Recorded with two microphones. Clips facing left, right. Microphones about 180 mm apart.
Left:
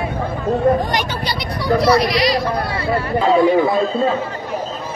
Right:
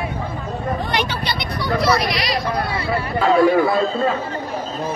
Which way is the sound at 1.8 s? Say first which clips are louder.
Left 5 dB; 35° left (ahead or behind).